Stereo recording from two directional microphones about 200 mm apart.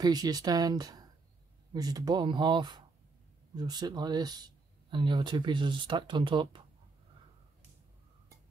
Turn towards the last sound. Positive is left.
turn(degrees=-25)  # may be behind; listen again after turning